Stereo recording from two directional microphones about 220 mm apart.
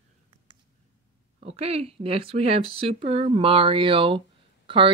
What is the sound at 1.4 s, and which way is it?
Speech, 30° right (ahead or behind).